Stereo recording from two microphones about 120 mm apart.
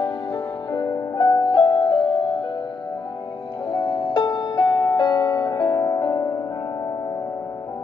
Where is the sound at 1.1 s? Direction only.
40° left (ahead or behind).